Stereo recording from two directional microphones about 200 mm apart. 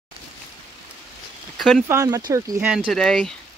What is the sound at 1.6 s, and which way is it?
Speech, centre (ahead or behind).